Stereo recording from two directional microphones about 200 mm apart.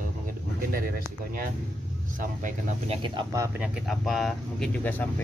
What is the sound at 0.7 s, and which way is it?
Speech, 45° right (ahead or behind).